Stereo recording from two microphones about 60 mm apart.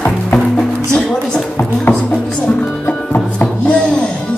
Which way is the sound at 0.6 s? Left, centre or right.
Centre.